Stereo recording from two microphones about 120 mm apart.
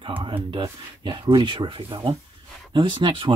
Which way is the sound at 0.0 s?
45° right (ahead or behind).